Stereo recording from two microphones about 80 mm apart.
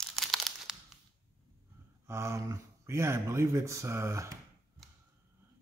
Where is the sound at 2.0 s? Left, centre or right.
Right.